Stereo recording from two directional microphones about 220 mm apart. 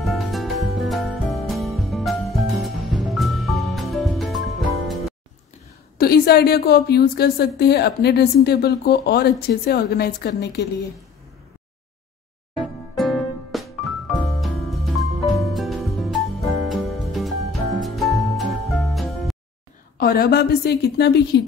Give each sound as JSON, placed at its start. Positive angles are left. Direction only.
{"t": 0.0, "sound": "music", "side_deg": 0}
{"t": 5.9, "sound": "a woman's voice", "side_deg": 45}
{"t": 12.5, "sound": "music", "side_deg": 0}
{"t": 20.0, "sound": "a woman's voice", "side_deg": 45}